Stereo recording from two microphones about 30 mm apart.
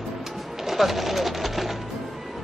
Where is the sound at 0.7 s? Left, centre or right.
Centre.